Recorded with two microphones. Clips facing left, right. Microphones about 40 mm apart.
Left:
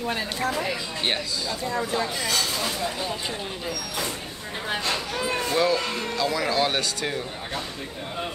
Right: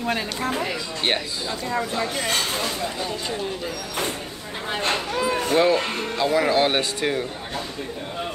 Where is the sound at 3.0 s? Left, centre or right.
Centre.